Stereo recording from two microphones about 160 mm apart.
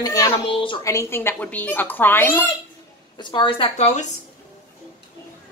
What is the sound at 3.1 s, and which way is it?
Speech, 30° left (ahead or behind).